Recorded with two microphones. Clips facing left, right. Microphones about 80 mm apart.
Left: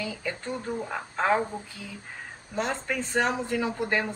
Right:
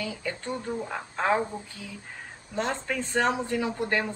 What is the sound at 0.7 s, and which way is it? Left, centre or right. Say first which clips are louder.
Speech: even; centre.